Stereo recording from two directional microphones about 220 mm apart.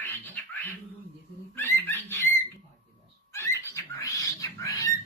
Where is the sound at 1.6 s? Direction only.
10° left (ahead or behind).